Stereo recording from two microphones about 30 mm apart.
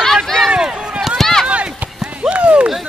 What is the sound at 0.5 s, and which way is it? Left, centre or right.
Chop, right.